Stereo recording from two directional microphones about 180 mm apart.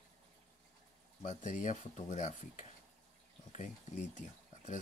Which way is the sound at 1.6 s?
40° left (ahead or behind).